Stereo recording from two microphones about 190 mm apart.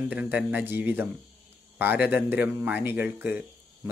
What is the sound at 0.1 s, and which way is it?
Speech, 10° right (ahead or behind).